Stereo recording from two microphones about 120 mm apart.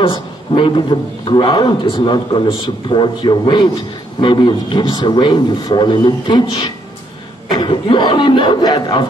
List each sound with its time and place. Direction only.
0.0 s a man's voice: 45° left (ahead or behind)
7.5 s a man's voice: 40° left (ahead or behind)